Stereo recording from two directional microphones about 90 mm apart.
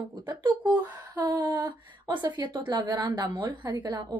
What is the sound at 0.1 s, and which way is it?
A woman's voice, 55° right (ahead or behind).